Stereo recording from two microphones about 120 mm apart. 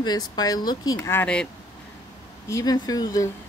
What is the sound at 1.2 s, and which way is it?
Speech, 10° left (ahead or behind).